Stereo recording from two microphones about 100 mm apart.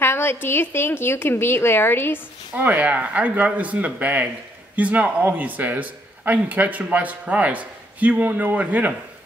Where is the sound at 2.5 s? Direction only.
15° right (ahead or behind).